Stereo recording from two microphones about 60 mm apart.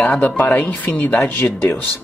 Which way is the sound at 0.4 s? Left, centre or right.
Left.